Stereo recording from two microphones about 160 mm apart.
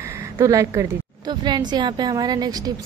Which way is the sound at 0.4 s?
20° right (ahead or behind).